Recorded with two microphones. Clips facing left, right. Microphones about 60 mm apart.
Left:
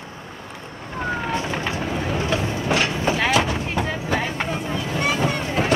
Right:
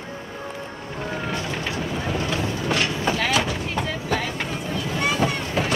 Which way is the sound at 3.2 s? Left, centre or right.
Left.